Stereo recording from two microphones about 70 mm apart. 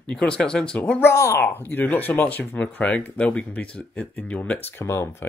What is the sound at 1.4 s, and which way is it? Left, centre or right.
Speech, left.